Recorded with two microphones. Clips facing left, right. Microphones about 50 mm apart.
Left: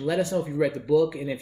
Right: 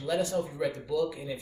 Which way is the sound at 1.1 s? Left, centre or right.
Left.